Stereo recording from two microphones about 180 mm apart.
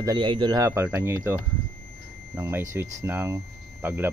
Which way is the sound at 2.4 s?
15° right (ahead or behind).